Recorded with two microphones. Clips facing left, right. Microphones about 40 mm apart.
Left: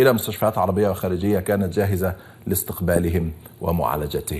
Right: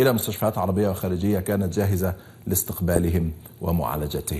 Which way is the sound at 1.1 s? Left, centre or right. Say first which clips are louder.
Left 3 dB; centre.